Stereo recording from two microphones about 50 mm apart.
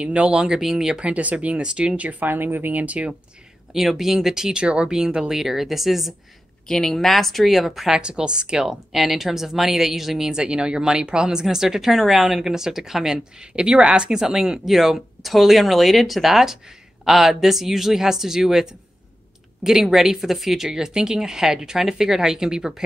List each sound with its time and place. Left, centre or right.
0.0 s speech: right
0.4 s speech: centre; by 2.8 s right
2.8 s speech: right
3.7 s speech: centre
6.7 s speech: centre
7.9 s speech: centre
8.6 s speech: centre